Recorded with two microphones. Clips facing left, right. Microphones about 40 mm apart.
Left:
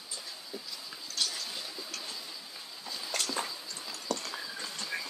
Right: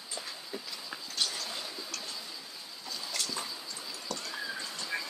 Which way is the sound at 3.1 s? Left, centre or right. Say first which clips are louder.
Left 3 dB; left.